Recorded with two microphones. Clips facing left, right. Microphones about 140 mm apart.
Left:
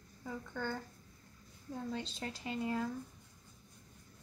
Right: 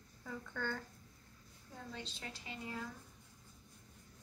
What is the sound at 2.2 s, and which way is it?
Speech, 45° left (ahead or behind).